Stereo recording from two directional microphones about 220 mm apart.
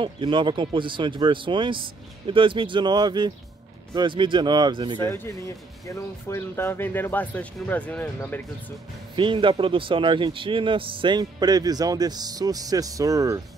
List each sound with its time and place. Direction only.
0.0 s a man's voice: 20° right (ahead or behind)
5.0 s speech: 10° left (ahead or behind)
9.1 s a man's voice: 20° right (ahead or behind)